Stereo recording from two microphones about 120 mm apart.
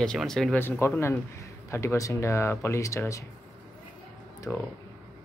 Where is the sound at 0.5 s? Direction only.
20° left (ahead or behind).